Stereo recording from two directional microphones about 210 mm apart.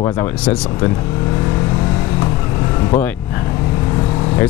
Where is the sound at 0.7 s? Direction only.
15° left (ahead or behind).